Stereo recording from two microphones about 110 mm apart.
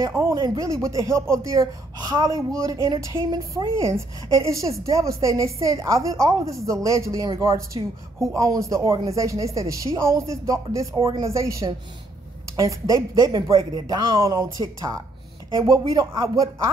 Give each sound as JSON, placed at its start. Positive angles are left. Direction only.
{"t": 0.3, "sound": "a woman's voice", "side_deg": -35}